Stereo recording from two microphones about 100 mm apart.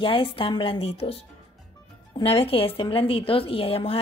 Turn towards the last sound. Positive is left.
turn(degrees=70)  # may be behind; listen again after turning